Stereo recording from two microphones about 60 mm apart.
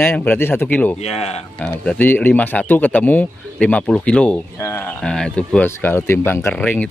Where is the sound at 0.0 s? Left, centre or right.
Left.